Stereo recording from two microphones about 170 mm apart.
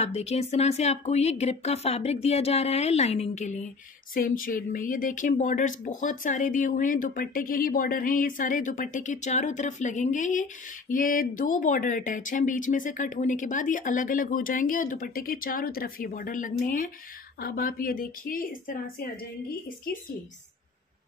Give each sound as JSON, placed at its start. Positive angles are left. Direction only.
{"t": 0.0, "sound": "speech", "side_deg": 40}
{"t": 4.1, "sound": "a woman's voice", "side_deg": 55}